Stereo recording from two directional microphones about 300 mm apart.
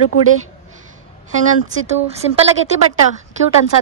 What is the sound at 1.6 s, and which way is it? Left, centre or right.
Speech, right.